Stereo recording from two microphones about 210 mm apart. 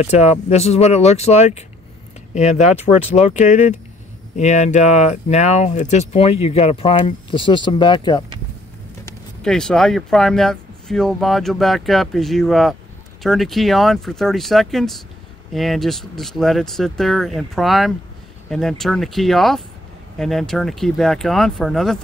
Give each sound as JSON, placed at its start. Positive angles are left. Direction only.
{"t": 0.0, "sound": "speech", "side_deg": 30}
{"t": 9.4, "sound": "speech", "side_deg": 5}